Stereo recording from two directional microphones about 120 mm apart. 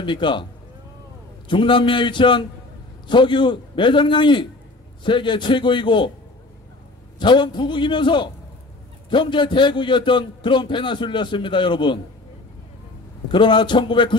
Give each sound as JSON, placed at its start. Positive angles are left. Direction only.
{"t": 0.0, "sound": "a man's voice", "side_deg": 40}
{"t": 1.5, "sound": "a man's voice", "side_deg": 45}
{"t": 7.2, "sound": "a man's voice", "side_deg": 40}
{"t": 13.3, "sound": "a man's voice", "side_deg": 40}